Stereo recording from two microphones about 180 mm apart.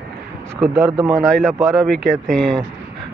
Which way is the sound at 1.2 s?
5° left (ahead or behind).